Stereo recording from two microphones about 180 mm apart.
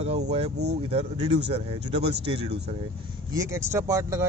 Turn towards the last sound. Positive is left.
turn(degrees=-15)  # may be behind; listen again after turning